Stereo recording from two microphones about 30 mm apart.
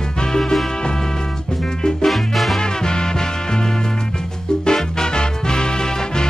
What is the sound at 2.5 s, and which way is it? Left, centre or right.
Music, left.